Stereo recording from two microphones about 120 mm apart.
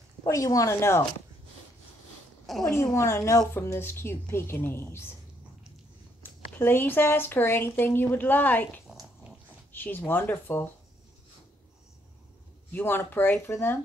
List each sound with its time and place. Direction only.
0.2 s a woman's voice: 30° left (ahead or behind)
2.4 s a sound: centre (ahead or behind)
2.7 s a woman's voice: 25° left (ahead or behind)
6.2 s speech: 15° left (ahead or behind)
12.7 s speech: 15° left (ahead or behind)